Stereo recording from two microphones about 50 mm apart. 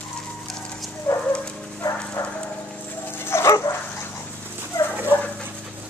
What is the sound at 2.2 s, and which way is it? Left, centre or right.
Clip-clop, left.